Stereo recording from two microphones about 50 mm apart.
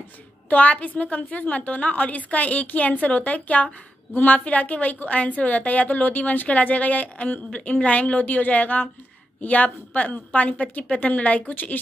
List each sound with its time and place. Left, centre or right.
0.5 s a woman's voice: left